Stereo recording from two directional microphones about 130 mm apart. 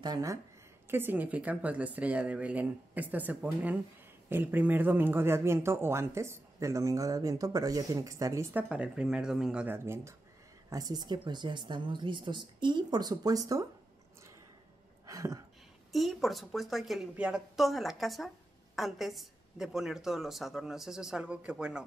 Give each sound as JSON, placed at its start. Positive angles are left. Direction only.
{"t": 0.0, "sound": "speech", "side_deg": -30}
{"t": 0.8, "sound": "speech", "side_deg": -15}
{"t": 8.5, "sound": "speech", "side_deg": -10}
{"t": 9.8, "sound": "speech", "side_deg": -20}
{"t": 15.0, "sound": "a sound", "side_deg": -25}
{"t": 15.9, "sound": "a woman's voice", "side_deg": 0}